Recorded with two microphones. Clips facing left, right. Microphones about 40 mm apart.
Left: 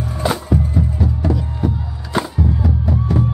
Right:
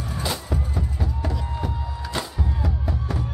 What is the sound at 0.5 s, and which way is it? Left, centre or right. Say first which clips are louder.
Music: left 10 dB; centre.